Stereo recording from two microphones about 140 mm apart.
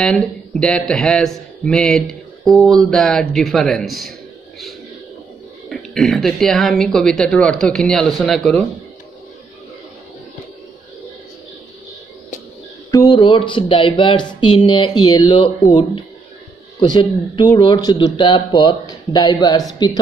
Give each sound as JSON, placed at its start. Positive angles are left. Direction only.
{"t": 0.0, "sound": "a man's voice", "side_deg": 5}
{"t": 5.9, "sound": "a man's voice", "side_deg": 0}
{"t": 12.9, "sound": "speech", "side_deg": 30}